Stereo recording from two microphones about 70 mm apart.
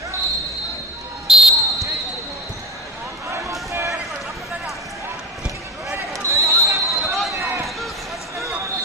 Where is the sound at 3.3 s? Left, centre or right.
Right.